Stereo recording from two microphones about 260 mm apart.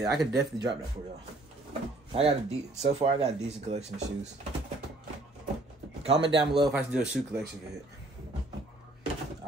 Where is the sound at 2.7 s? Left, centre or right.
Right.